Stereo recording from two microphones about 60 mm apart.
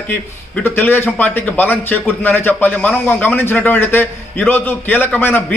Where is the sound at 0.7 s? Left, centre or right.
Left.